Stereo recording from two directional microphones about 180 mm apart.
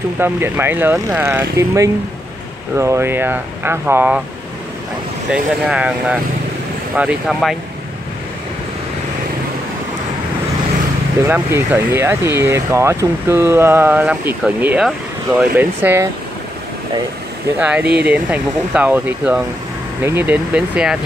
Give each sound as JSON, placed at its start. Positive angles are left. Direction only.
{"t": 0.2, "sound": "speech", "side_deg": -10}
{"t": 5.3, "sound": "speech", "side_deg": -5}
{"t": 11.2, "sound": "speech", "side_deg": -10}
{"t": 17.6, "sound": "speech", "side_deg": -10}